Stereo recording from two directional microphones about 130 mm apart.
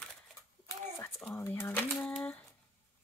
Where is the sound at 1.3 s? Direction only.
20° left (ahead or behind).